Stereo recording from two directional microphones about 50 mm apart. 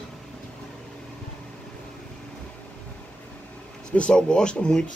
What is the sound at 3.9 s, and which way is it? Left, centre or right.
Speech, centre.